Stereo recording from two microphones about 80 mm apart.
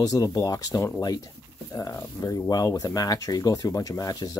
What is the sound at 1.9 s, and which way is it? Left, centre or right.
Speech, left.